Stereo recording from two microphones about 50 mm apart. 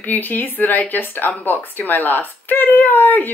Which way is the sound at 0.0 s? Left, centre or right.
Left.